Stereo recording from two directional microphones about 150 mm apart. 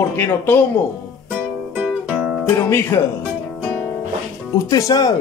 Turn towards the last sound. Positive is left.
turn(degrees=25)  # may be behind; listen again after turning